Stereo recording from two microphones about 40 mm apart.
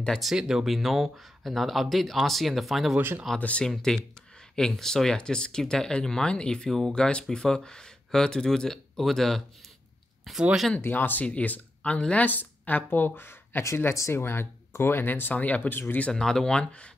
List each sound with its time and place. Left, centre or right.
0.2 s speech: centre
3.3 s speech: left
3.6 s speech: centre
10.8 s speech: left
11.2 s speech: left
12.3 s speech: left
15.0 s speech: left
16.1 s speech: centre